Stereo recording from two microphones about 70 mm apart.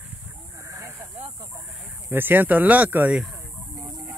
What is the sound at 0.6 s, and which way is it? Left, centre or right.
Snake, right.